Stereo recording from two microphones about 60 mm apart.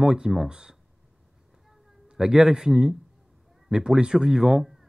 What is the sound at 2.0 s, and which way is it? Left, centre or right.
Speech, centre.